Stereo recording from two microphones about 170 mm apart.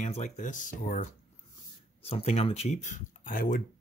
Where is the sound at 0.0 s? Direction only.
40° left (ahead or behind).